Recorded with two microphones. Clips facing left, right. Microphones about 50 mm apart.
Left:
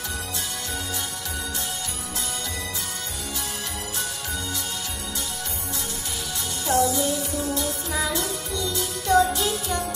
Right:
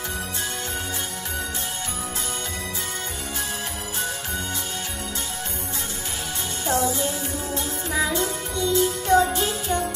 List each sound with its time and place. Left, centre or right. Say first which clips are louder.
6.7 s music: left 2 dB; right